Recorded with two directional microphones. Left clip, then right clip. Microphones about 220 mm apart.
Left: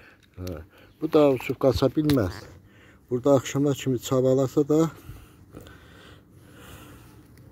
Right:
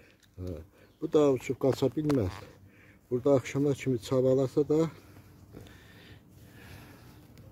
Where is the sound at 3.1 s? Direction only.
15° left (ahead or behind).